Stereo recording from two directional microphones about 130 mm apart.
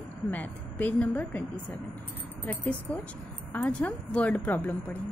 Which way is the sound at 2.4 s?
15° left (ahead or behind).